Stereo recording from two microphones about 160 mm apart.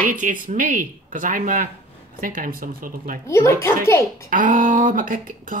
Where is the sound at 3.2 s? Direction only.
15° left (ahead or behind).